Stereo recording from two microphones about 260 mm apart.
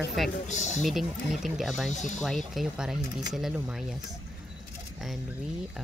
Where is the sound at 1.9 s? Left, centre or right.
Left.